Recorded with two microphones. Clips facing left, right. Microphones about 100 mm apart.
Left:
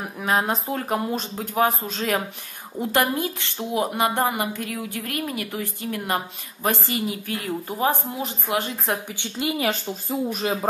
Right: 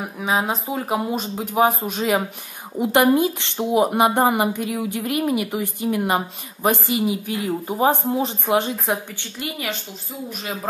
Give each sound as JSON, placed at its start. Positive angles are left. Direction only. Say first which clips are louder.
{"t": 0.2, "sound": "a woman's voice", "louder": "right 1 dB", "side_deg": 0}
{"t": 9.1, "sound": "a woman's voice", "louder": "left 3 dB", "side_deg": 20}
{"t": 10.0, "sound": "speech", "louder": "left 6 dB", "side_deg": 35}